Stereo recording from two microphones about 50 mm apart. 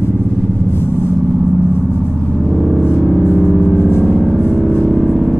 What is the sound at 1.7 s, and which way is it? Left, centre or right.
Vehicle, left.